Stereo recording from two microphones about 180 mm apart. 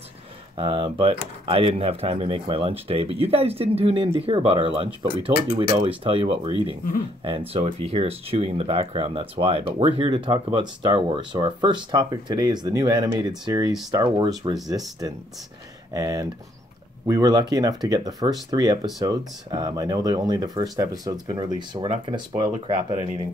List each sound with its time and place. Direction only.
0.6 s speech: 25° right (ahead or behind)
15.9 s speech: 20° right (ahead or behind)